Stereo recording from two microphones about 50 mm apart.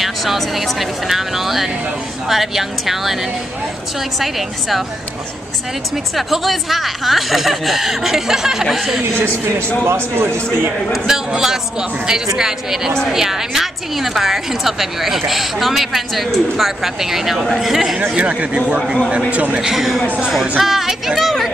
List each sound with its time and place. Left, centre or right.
0.0 s a woman's voice: centre
4.2 s a woman's voice: centre
6.1 s a woman's voice: centre
9.8 s a man's voice: right
10.9 s a woman's voice: centre
18.1 s speech: right
19.6 s a woman's voice: centre